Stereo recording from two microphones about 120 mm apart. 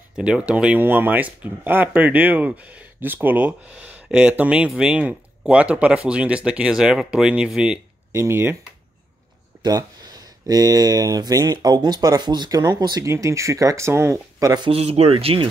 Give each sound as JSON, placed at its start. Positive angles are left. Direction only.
{"t": 0.1, "sound": "speech", "side_deg": -10}
{"t": 8.1, "sound": "speech", "side_deg": -20}
{"t": 9.6, "sound": "speech", "side_deg": -30}
{"t": 14.7, "sound": "speech", "side_deg": -55}